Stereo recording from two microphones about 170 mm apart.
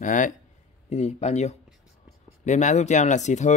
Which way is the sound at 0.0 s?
50° left (ahead or behind).